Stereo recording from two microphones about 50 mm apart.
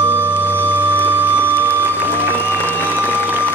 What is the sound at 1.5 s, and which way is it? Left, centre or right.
Music, left.